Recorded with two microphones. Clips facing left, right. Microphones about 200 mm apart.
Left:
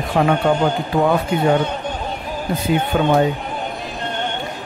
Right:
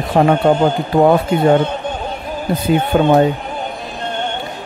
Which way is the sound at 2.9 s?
40° right (ahead or behind).